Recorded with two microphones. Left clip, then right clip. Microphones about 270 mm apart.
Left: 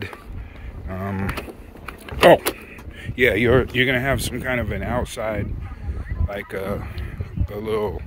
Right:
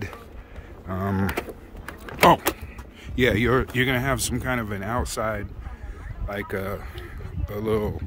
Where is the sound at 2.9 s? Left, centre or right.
Centre.